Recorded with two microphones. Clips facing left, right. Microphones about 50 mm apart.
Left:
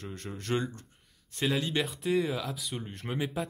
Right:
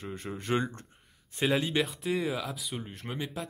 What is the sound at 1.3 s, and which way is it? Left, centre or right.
Speech, centre.